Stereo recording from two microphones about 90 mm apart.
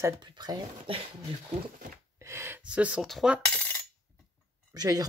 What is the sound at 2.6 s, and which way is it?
Speech, 15° right (ahead or behind).